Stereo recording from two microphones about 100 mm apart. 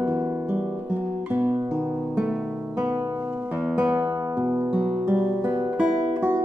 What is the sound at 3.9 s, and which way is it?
Music, 20° right (ahead or behind).